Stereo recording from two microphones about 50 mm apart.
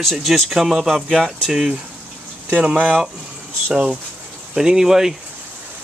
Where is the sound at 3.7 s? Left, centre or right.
Centre.